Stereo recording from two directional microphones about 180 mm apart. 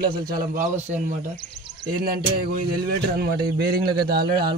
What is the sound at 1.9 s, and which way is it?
Speech, 55° right (ahead or behind).